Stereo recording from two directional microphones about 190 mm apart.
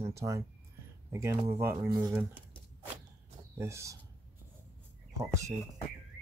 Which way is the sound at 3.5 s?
15° right (ahead or behind).